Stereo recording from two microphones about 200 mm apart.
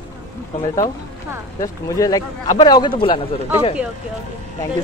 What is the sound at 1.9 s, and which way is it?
Speech, 20° left (ahead or behind).